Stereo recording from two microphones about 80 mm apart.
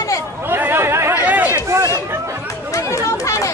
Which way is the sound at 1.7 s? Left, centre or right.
Right.